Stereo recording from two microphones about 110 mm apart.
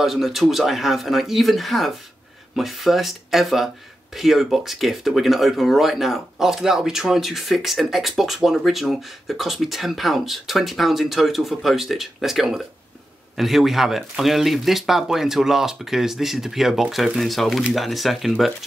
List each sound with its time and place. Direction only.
0.0 s speech: centre (ahead or behind)